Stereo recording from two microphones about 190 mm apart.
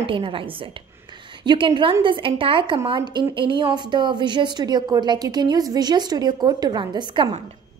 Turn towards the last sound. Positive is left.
turn(degrees=-25)  # may be behind; listen again after turning